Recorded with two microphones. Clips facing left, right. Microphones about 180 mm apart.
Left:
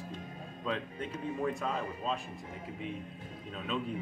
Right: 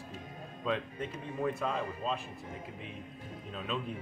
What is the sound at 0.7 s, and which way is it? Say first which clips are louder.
Speech: right 2 dB; centre (ahead or behind).